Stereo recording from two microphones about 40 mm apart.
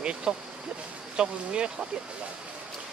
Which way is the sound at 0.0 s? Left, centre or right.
Right.